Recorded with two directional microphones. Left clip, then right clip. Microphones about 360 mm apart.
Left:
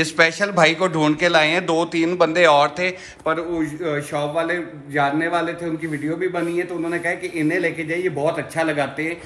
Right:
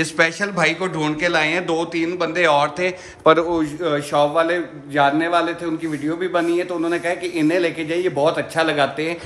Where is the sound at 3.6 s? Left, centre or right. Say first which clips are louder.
Right 3 dB; centre.